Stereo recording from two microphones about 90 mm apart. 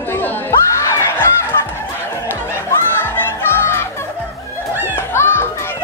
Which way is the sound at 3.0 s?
25° left (ahead or behind).